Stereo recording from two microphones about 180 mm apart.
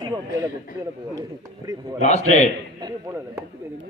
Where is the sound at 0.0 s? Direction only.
20° right (ahead or behind).